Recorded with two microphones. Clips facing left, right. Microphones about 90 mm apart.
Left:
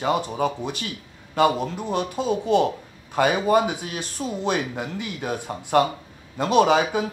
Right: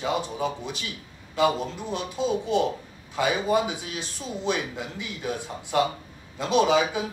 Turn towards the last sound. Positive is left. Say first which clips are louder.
# left 3 dB
turn(degrees=55)  # may be behind; listen again after turning